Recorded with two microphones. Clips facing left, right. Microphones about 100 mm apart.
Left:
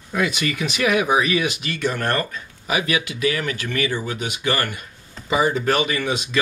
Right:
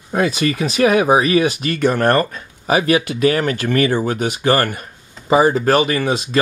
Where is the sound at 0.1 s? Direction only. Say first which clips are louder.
Right 5 dB; 35° right (ahead or behind).